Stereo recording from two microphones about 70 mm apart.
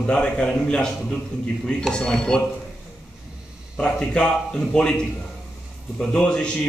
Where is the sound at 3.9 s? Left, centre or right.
Centre.